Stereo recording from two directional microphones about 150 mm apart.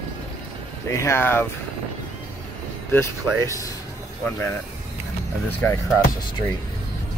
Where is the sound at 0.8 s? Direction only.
20° left (ahead or behind).